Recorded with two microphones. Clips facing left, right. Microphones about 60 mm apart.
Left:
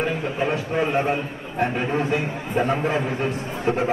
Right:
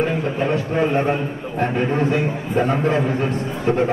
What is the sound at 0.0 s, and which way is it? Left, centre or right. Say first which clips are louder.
A man's voice: right 3 dB; centre.